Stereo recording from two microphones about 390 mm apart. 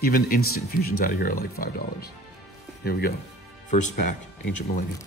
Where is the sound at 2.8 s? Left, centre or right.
Left.